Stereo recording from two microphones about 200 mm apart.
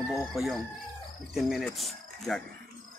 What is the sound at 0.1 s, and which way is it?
Speech, centre (ahead or behind).